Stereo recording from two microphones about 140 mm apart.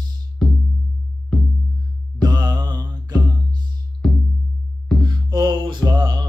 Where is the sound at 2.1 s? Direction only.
30° right (ahead or behind).